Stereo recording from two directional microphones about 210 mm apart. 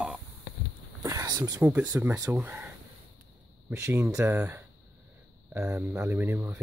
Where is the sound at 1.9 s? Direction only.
10° right (ahead or behind).